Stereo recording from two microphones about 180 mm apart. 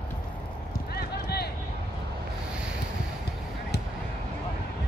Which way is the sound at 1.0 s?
60° left (ahead or behind).